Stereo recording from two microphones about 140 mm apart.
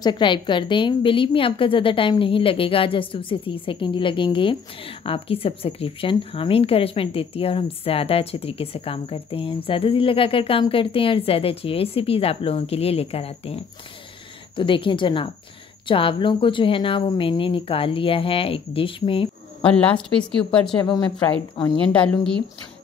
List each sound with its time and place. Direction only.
0.0 s a woman's voice: 35° left (ahead or behind)
19.6 s a woman's voice: 10° left (ahead or behind)
20.7 s a woman's voice: 35° left (ahead or behind)
21.8 s a woman's voice: 10° left (ahead or behind)